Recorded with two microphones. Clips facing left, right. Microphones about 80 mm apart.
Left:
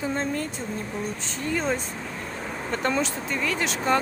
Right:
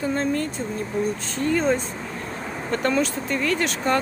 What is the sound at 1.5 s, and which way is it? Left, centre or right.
Speech, centre.